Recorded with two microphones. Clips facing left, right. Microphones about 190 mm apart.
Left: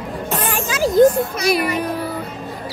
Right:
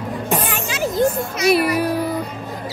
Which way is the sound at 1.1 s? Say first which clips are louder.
Right 1 dB; centre (ahead or behind).